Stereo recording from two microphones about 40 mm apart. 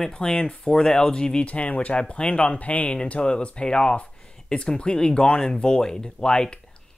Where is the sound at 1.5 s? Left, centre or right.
Left.